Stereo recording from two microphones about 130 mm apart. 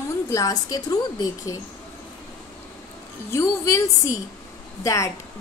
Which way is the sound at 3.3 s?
20° left (ahead or behind).